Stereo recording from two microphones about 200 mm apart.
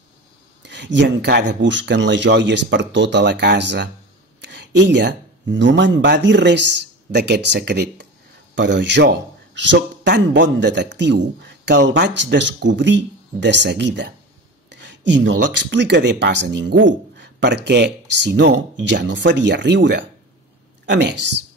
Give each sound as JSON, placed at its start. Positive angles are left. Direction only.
{"t": 0.6, "sound": "speech", "side_deg": -60}